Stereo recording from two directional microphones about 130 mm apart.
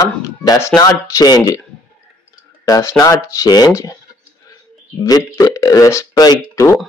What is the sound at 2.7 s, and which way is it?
Speech, 25° left (ahead or behind).